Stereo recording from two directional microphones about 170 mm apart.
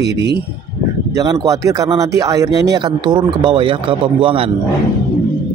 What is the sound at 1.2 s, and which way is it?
Speech, 20° right (ahead or behind).